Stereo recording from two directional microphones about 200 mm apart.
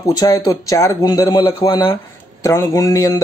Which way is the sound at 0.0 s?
20° left (ahead or behind).